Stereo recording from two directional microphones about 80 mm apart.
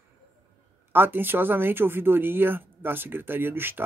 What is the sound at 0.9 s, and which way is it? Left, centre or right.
Speech, right.